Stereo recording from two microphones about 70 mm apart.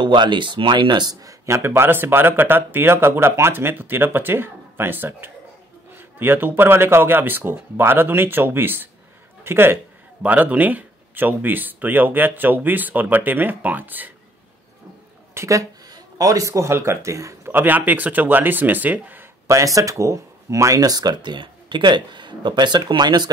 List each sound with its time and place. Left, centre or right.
0.0 s speech: right
1.4 s a man's voice: right
10.2 s speech: right
15.3 s speech: right
17.5 s speech: right
19.4 s speech: right